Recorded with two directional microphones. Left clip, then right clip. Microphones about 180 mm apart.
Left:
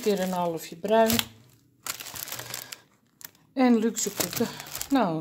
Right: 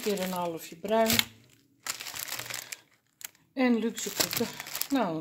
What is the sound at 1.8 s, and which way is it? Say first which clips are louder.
Crumpling: left 1 dB; 35° left (ahead or behind).